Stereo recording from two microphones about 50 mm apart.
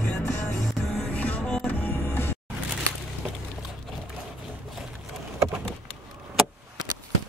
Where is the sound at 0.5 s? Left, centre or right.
Centre.